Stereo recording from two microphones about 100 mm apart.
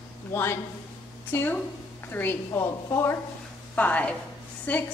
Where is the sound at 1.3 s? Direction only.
20° left (ahead or behind).